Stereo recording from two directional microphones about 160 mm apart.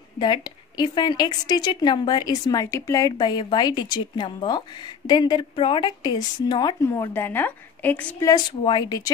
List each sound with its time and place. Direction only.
0.2 s a woman's voice: 25° left (ahead or behind); by 8.3 s 10° left (ahead or behind)
8.3 s a woman's voice: 25° left (ahead or behind)